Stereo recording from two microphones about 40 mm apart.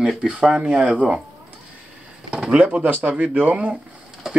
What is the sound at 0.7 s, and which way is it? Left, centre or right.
Speech, right.